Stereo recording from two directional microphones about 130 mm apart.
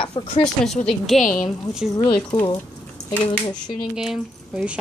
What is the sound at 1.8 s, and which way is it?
Speech, 10° right (ahead or behind).